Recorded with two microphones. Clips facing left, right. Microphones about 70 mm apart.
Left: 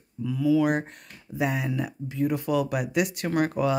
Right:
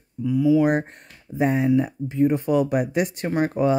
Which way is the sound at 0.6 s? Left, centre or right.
Right.